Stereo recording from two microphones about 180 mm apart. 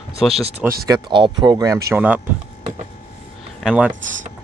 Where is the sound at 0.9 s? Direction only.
25° right (ahead or behind).